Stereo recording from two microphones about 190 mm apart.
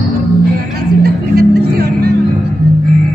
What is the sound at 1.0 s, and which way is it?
Music, 55° right (ahead or behind).